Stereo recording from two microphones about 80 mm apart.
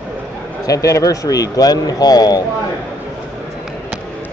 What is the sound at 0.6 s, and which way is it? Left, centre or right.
Speech, left.